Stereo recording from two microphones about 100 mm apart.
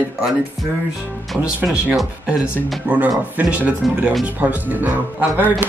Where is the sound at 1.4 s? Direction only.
10° right (ahead or behind).